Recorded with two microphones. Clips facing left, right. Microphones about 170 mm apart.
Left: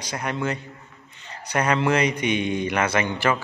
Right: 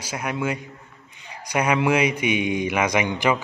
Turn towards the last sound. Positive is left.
turn(degrees=-15)  # may be behind; listen again after turning